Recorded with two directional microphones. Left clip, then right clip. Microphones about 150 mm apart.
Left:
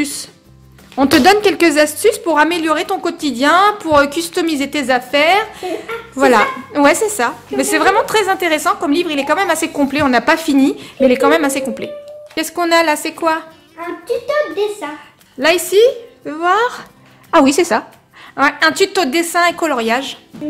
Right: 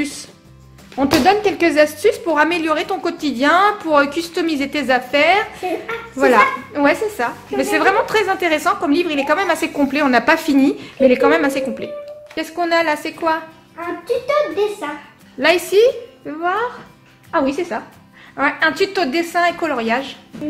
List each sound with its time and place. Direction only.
0.0 s a woman's voice: 20° left (ahead or behind)
0.9 s a woman's voice: 35° left (ahead or behind)
12.4 s a woman's voice: 35° left (ahead or behind)
13.7 s a child's voice: 10° left (ahead or behind)
16.3 s a woman's voice: 35° left (ahead or behind)
17.3 s speech: 70° left (ahead or behind)
18.3 s a woman's voice: 30° left (ahead or behind)